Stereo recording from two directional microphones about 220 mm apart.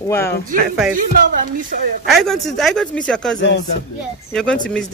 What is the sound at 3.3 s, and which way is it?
Speech, 55° left (ahead or behind).